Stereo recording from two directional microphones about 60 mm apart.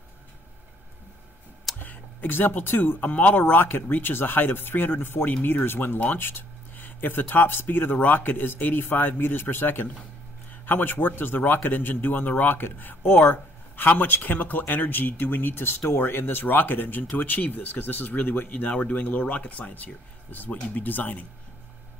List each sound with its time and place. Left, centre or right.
1.8 s a man's voice: left